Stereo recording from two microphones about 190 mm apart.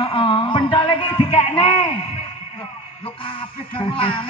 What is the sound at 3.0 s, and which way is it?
Music, 30° left (ahead or behind).